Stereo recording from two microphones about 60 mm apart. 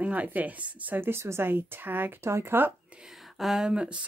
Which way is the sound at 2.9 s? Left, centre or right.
Centre.